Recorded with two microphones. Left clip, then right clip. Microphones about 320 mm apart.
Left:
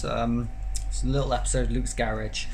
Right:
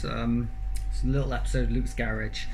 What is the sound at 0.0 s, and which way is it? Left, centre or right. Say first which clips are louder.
Speech: left 3 dB; centre.